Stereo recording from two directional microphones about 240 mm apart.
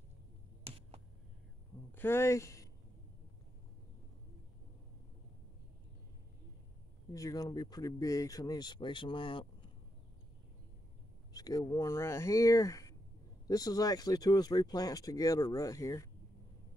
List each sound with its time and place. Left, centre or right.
0.7 s a sound: right
2.0 s speech: centre
7.1 s speech: centre
11.3 s speech: centre